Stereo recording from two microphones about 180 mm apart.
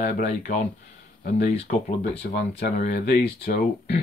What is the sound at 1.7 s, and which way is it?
Speech, 55° left (ahead or behind).